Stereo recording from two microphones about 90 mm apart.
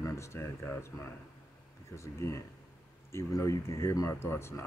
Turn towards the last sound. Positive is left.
turn(degrees=30)  # may be behind; listen again after turning